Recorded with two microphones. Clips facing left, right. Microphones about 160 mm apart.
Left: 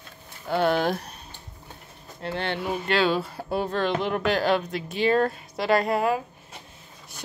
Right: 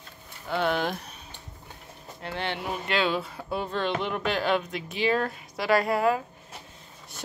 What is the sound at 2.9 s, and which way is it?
Speech, 35° left (ahead or behind).